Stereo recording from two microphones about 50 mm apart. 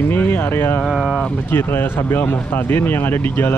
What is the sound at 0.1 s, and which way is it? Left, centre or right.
Speech, left.